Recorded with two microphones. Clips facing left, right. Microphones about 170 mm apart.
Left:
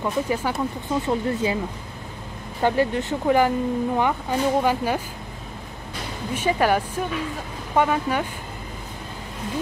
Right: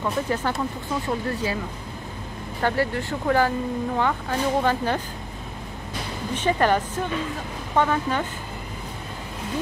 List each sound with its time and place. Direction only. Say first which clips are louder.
0.0 s speech: left 1 dB; 10° left (ahead or behind)
2.6 s speech: left 3 dB; 20° left (ahead or behind)
6.3 s speech: even; 10° left (ahead or behind)